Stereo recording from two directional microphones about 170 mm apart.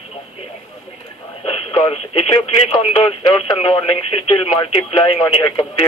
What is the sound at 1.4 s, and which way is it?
Radio, 30° left (ahead or behind).